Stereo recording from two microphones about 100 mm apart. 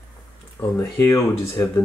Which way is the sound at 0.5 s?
20° left (ahead or behind).